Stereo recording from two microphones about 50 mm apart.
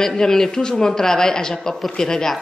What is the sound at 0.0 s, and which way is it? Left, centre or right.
A man's voice, centre.